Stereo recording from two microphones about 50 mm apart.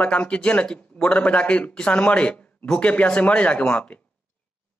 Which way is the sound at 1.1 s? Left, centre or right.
Left.